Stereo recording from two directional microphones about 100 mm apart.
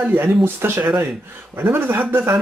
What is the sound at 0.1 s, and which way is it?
Speech, 20° right (ahead or behind).